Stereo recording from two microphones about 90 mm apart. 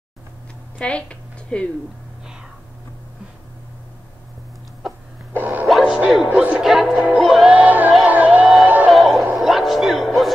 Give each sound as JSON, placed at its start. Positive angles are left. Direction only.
{"t": 0.7, "sound": "a sound", "side_deg": 10}
{"t": 5.4, "sound": "music", "side_deg": -20}
{"t": 5.7, "sound": "music", "side_deg": 0}
{"t": 6.2, "sound": "music", "side_deg": -20}
{"t": 6.6, "sound": "music", "side_deg": -5}
{"t": 7.5, "sound": "music", "side_deg": -20}
{"t": 8.0, "sound": "crowd", "side_deg": -15}
{"t": 8.8, "sound": "music", "side_deg": 0}